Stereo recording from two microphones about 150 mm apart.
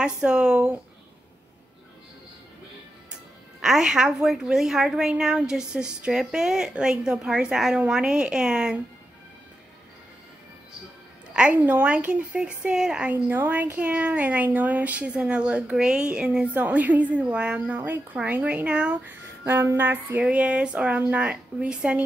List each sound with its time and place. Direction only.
0.0 s a woman's voice: 5° right (ahead or behind)
3.6 s a woman's voice: 5° right (ahead or behind)
11.3 s a woman's voice: 10° right (ahead or behind)